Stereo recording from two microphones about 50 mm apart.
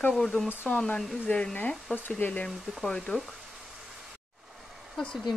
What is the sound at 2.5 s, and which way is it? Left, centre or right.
Speech, centre.